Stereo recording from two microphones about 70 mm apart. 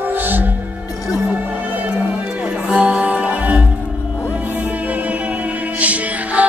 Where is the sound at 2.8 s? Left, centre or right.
Centre.